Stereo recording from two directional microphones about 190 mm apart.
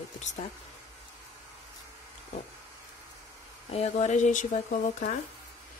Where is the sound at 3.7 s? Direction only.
35° left (ahead or behind).